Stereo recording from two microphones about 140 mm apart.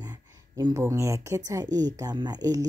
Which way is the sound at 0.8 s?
20° right (ahead or behind).